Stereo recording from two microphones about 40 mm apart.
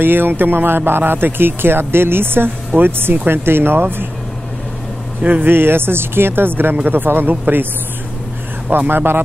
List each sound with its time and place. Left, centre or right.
0.0 s speech: right
5.4 s speech: right
8.7 s speech: right